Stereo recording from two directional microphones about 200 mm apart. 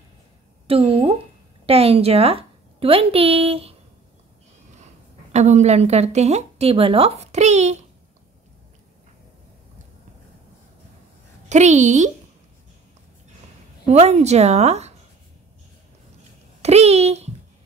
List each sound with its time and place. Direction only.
0.7 s a woman's voice: 30° right (ahead or behind)
5.3 s a woman's voice: 35° right (ahead or behind)
11.4 s a woman's voice: 35° right (ahead or behind)
13.8 s a woman's voice: 30° right (ahead or behind)
16.6 s a child's voice: 30° right (ahead or behind)